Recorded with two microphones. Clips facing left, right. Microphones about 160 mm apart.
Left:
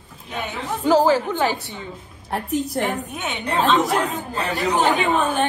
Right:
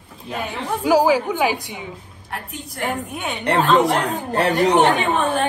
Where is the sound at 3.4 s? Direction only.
75° right (ahead or behind).